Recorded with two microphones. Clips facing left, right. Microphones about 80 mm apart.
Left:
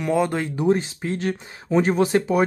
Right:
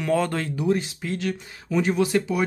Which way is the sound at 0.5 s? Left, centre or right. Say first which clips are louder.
Left 3 dB; left.